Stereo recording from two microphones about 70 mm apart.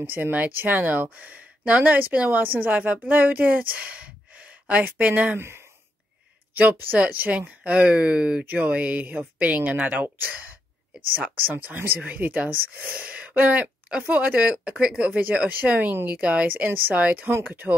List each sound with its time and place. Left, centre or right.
0.0 s speech: right
6.5 s speech: right
11.1 s speech: right